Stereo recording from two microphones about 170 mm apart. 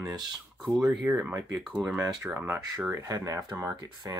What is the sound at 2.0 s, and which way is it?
Speech, 15° right (ahead or behind).